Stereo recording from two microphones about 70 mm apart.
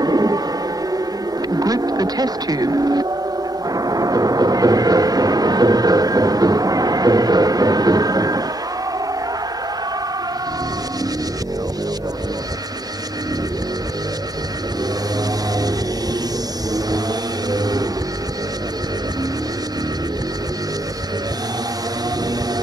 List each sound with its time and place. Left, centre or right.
0.0 s music: right
1.5 s music: right
3.7 s a sound: right
17.5 s vehicle: right